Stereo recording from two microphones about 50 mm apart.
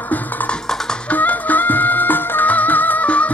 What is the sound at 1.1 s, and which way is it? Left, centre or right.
Music, left.